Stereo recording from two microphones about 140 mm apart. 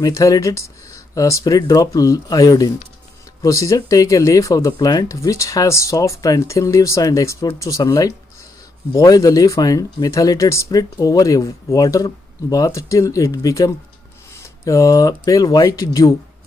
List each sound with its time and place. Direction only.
0.0 s speech: 25° left (ahead or behind)